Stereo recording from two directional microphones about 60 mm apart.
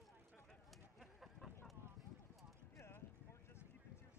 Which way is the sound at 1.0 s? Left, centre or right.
Centre.